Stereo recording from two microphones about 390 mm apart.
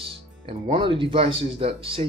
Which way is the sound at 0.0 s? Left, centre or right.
Centre.